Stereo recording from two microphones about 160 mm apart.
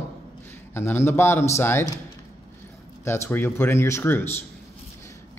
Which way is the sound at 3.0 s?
15° left (ahead or behind).